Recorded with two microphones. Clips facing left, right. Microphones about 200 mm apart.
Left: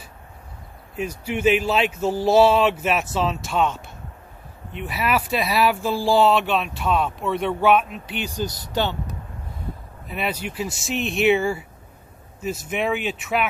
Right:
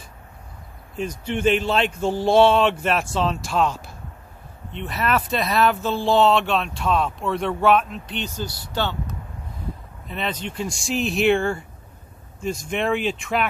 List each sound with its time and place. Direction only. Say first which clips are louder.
0.9 s speech: even; 5° left (ahead or behind)